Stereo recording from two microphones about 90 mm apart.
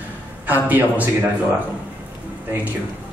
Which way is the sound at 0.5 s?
20° right (ahead or behind).